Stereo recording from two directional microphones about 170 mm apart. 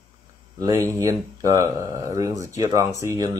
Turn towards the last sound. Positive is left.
turn(degrees=-20)  # may be behind; listen again after turning